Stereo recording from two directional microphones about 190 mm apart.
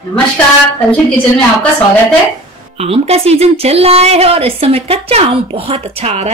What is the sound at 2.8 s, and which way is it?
Speech, 30° right (ahead or behind).